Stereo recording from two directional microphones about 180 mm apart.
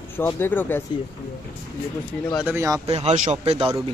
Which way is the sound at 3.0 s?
40° right (ahead or behind).